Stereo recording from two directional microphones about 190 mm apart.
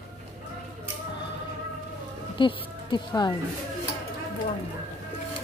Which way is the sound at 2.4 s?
25° left (ahead or behind).